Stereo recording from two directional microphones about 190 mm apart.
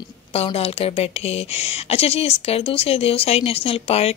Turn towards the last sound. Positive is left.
turn(degrees=30)  # may be behind; listen again after turning